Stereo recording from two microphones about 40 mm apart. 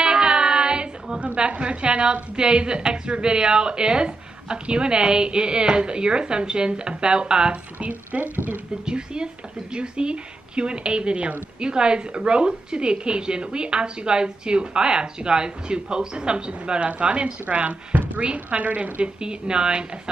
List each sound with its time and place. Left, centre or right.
0.0 s child singing: right
1.2 s a woman's voice: right
8.1 s a woman's voice: right
8.8 s a woman's voice: right